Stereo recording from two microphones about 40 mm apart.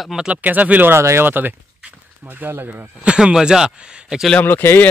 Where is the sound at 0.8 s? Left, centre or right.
Right.